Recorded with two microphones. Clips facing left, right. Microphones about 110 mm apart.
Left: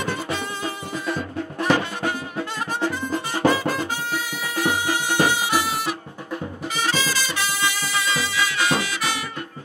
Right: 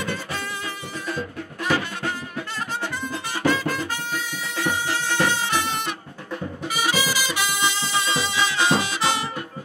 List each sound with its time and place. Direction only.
1.8 s music: 25° left (ahead or behind)
3.4 s music: 15° left (ahead or behind)
6.7 s music: 10° right (ahead or behind)